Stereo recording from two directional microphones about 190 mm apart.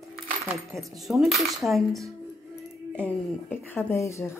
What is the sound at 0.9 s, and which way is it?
Cutlery, centre (ahead or behind).